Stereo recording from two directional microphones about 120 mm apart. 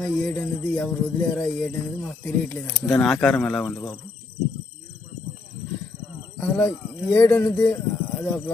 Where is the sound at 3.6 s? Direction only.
20° left (ahead or behind).